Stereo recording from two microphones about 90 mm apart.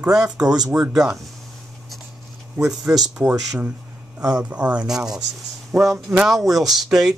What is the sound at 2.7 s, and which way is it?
Speech, 5° right (ahead or behind).